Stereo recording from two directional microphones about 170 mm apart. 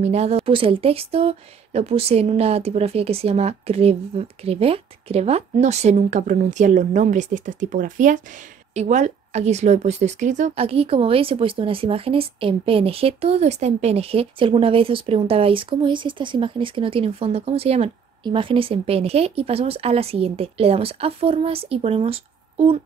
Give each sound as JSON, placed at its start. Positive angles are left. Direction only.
{"t": 0.0, "sound": "speech", "side_deg": -40}